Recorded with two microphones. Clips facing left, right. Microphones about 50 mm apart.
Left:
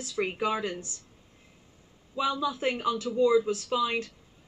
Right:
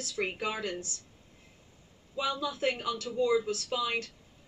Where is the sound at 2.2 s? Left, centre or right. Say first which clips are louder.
Left 3 dB; centre.